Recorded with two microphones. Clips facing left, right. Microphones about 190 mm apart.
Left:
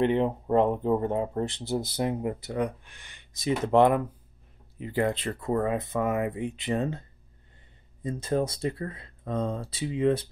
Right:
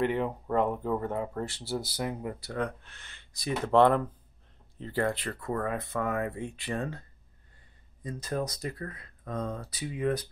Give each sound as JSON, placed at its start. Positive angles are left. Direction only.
{"t": 0.0, "sound": "speech", "side_deg": 25}